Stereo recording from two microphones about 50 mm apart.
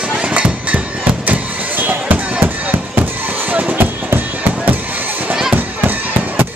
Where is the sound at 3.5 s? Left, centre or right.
Right.